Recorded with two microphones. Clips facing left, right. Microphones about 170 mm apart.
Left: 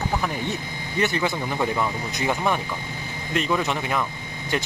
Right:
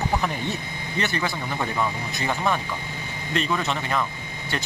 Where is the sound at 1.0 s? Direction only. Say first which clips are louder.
Left 3 dB; 15° left (ahead or behind).